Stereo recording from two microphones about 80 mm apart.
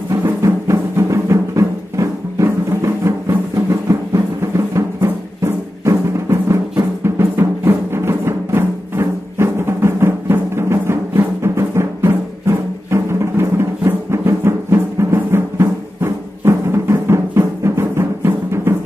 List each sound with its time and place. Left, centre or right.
0.1 s music: right
3.9 s drum: right
4.7 s music: right